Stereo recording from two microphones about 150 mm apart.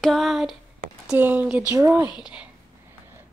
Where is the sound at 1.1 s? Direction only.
10° right (ahead or behind).